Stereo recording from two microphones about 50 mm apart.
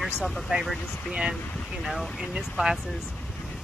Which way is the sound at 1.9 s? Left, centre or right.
Centre.